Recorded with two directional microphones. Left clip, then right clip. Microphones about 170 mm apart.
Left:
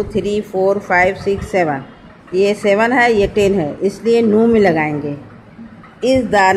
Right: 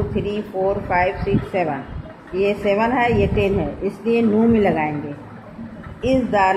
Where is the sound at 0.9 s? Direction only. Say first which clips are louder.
Left 6 dB; 55° left (ahead or behind).